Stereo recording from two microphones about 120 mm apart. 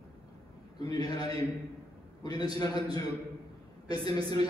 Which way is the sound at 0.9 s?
35° left (ahead or behind).